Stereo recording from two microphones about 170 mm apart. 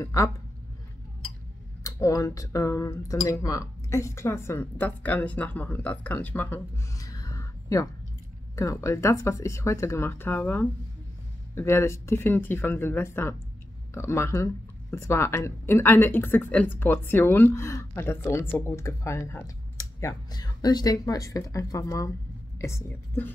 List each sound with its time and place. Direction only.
0.0 s speech: 20° left (ahead or behind)
1.8 s speech: 20° left (ahead or behind)